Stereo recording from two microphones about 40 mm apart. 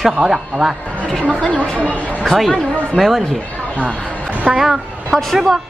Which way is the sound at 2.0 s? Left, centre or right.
Left.